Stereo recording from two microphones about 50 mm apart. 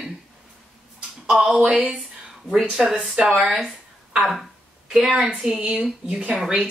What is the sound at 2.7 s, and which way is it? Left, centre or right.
Speech, centre.